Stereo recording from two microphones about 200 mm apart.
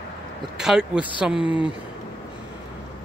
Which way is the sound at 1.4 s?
25° left (ahead or behind).